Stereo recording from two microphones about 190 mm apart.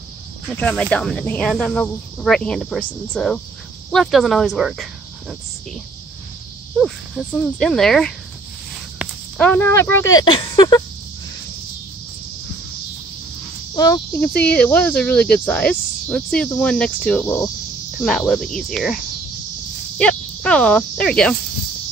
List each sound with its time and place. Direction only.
0.6 s speech: 5° left (ahead or behind)
6.8 s speech: centre (ahead or behind)
9.4 s speech: 10° left (ahead or behind)
13.7 s speech: 20° left (ahead or behind)
14.2 s speech: 5° left (ahead or behind)
20.0 s speech: 5° left (ahead or behind)